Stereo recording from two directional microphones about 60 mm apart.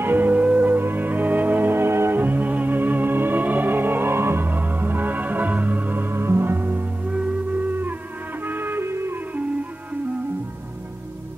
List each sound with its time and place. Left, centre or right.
0.0 s music: right